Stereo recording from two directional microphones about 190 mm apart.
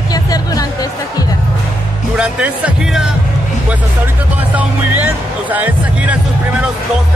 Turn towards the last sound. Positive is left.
turn(degrees=-5)  # may be behind; listen again after turning